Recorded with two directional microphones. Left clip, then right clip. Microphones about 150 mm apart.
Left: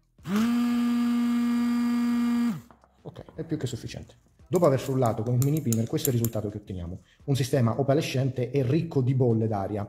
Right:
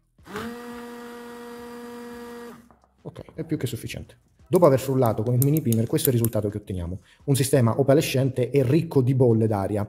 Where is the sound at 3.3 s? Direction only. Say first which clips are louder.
Right 3 dB; 45° right (ahead or behind).